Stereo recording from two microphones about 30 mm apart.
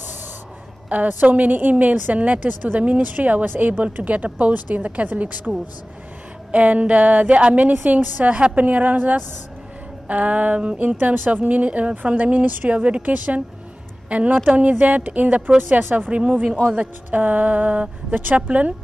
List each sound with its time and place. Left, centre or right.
0.8 s speech: right
1.5 s speech: right
2.1 s speech: right
3.9 s speech: right
6.5 s speech: right
10.0 s a woman's voice: right
13.0 s speech: right
14.0 s a woman's voice: right
15.4 s speech: right
16.1 s speech: right
16.5 s speech: right
17.1 s speech: right
18.3 s speech: right